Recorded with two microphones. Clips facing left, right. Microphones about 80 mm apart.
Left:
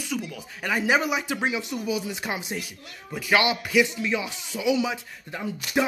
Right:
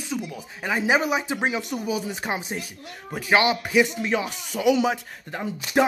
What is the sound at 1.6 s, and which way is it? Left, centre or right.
A man's voice, right.